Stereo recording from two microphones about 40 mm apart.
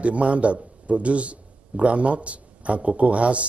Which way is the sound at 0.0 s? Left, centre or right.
Right.